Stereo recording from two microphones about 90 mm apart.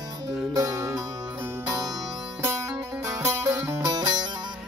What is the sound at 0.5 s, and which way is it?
Music, 40° right (ahead or behind).